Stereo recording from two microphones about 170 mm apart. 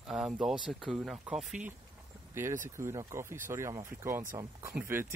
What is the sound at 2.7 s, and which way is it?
Speech, 15° right (ahead or behind).